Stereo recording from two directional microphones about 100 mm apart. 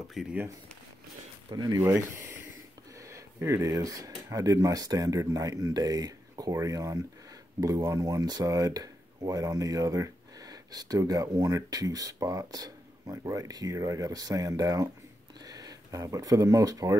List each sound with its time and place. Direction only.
0.1 s speech: 5° right (ahead or behind)
1.5 s speech: 45° right (ahead or behind)
1.8 s speech: 30° right (ahead or behind)